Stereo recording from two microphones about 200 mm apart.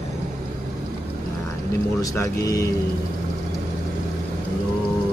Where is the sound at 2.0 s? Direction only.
15° left (ahead or behind).